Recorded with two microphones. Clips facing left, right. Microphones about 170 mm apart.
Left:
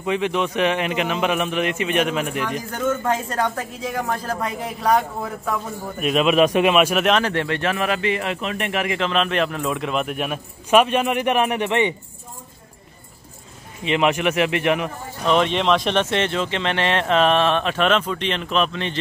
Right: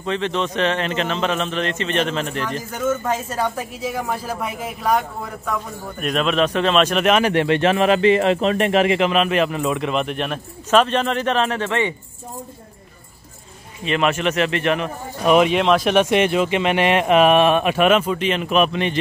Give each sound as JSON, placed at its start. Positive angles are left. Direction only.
{"t": 0.0, "sound": "speech", "side_deg": 10}
{"t": 2.7, "sound": "a woman's voice", "side_deg": -10}
{"t": 7.1, "sound": "speech", "side_deg": -10}
{"t": 9.0, "sound": "speech", "side_deg": -5}
{"t": 13.8, "sound": "speech", "side_deg": 15}
{"t": 15.2, "sound": "speech", "side_deg": -10}